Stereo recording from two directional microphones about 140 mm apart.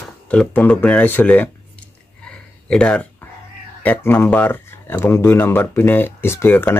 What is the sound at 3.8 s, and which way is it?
Speech, 15° left (ahead or behind).